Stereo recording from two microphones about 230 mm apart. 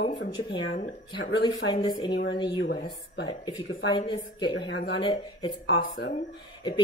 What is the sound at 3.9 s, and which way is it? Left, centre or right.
Speech, left.